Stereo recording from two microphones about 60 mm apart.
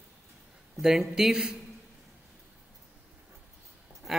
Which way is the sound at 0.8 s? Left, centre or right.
Centre.